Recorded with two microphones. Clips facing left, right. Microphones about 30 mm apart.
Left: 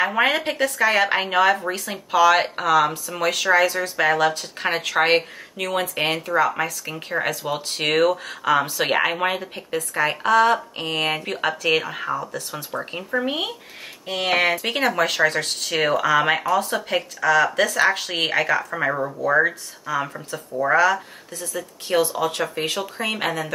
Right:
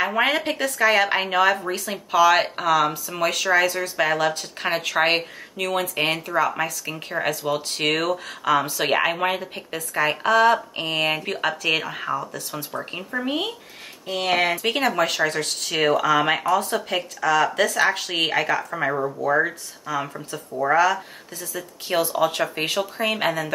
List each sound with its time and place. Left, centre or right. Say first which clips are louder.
0.0 s speech: left 1 dB; centre
14.1 s speech: left 1 dB; left
14.6 s speech: even; centre
15.6 s speech: right 1 dB; centre
22.6 s speech: right 1 dB; right
22.9 s speech: right 2 dB; centre